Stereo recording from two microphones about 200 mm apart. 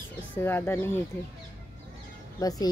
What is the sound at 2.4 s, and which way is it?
Speech, 20° left (ahead or behind).